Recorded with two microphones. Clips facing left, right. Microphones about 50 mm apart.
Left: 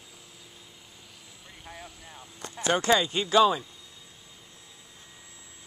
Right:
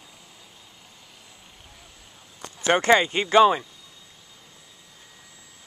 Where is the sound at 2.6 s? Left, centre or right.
Right.